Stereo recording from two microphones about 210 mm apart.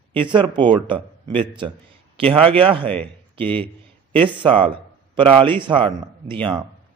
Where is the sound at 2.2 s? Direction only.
25° right (ahead or behind).